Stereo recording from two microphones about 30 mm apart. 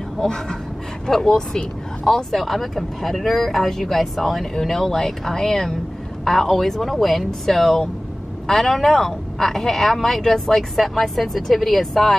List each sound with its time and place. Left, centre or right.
1.3 s speech: left
2.0 s speech: centre